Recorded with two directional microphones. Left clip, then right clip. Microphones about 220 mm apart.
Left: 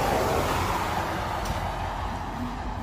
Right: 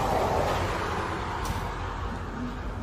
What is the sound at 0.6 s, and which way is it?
Vehicle, 50° left (ahead or behind).